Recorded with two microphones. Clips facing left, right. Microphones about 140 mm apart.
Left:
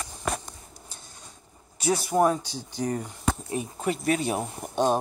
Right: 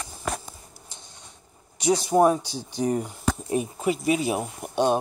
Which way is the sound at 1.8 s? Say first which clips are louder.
Right 3 dB; 20° right (ahead or behind).